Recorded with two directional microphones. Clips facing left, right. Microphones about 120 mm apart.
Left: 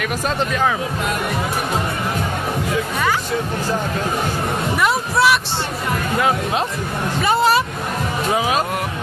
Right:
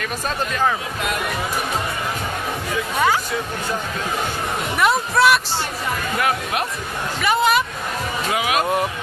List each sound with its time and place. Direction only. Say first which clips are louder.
4.7 s a sound: right 2 dB; centre (ahead or behind)
6.1 s speech: left 4 dB; 25° left (ahead or behind)
7.2 s vehicle: left 2 dB; 30° left (ahead or behind)
8.3 s speech: left 3 dB; 30° left (ahead or behind)